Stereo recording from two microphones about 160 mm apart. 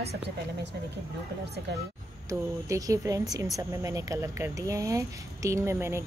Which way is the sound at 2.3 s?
20° right (ahead or behind).